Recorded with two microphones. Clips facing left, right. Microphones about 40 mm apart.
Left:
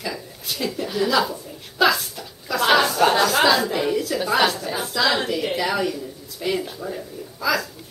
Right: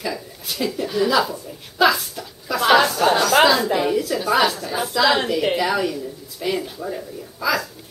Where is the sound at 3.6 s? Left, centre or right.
Centre.